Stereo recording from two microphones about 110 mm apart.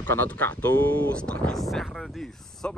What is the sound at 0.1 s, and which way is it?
Speech, 20° left (ahead or behind).